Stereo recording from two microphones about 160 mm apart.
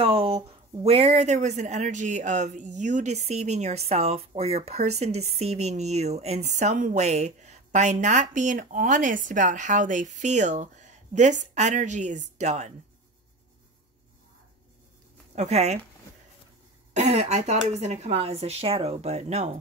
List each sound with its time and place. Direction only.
0.0 s a sound: 35° right (ahead or behind)
0.8 s speech: 40° right (ahead or behind)
15.3 s speech: 45° right (ahead or behind)
16.9 s speech: 45° right (ahead or behind)